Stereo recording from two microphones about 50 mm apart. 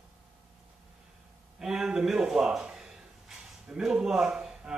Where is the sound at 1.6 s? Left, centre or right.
Centre.